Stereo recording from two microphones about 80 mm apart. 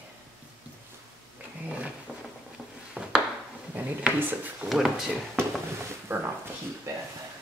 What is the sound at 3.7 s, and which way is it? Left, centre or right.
Speech, right.